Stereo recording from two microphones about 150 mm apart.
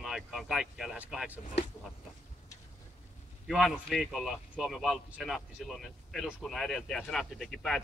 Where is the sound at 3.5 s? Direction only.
Centre (ahead or behind).